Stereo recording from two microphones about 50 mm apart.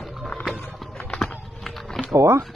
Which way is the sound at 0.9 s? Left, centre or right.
Left.